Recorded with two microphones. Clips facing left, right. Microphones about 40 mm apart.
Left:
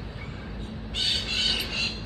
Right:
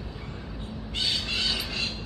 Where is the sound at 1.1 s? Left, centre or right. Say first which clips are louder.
Left 1 dB; left.